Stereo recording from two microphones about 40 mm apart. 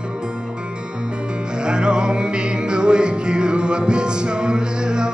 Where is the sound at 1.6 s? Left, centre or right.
Right.